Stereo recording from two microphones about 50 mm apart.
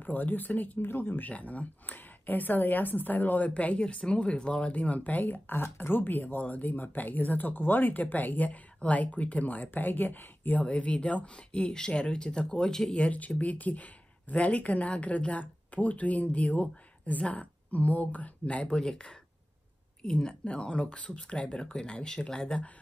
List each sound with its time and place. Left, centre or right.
0.0 s speech: left
1.3 s speech: left
10.6 s speech: left
13.0 s speech: left